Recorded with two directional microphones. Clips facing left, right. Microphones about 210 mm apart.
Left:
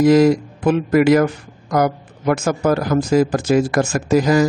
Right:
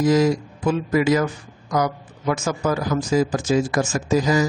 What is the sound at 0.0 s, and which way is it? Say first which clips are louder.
Speech: left 6 dB; 65° left (ahead or behind).